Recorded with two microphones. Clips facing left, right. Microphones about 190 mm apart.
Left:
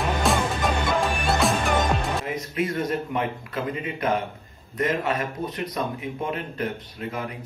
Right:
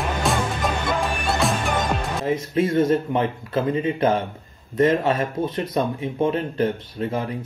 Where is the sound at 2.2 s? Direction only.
30° right (ahead or behind).